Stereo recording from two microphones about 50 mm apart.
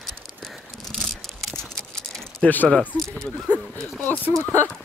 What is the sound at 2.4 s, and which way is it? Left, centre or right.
Speech, left.